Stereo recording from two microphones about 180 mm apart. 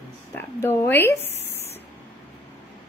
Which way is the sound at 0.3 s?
10° left (ahead or behind).